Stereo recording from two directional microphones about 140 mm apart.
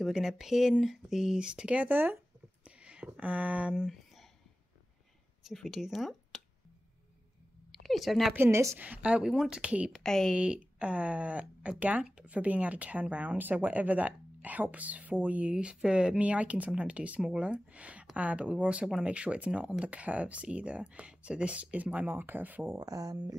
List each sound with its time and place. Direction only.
0.0 s speech: 5° right (ahead or behind)
2.6 s a sound: 10° right (ahead or behind)
3.1 s speech: 10° right (ahead or behind)
3.7 s a sound: centre (ahead or behind)
5.4 s speech: centre (ahead or behind)
7.8 s a woman's voice: centre (ahead or behind)
8.3 s speech: 15° right (ahead or behind)
10.0 s speech: 5° left (ahead or behind); by 22.8 s 10° right (ahead or behind)
22.8 s speech: 25° right (ahead or behind)